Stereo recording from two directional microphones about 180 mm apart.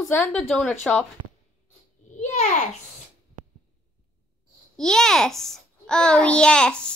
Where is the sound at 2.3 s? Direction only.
40° left (ahead or behind).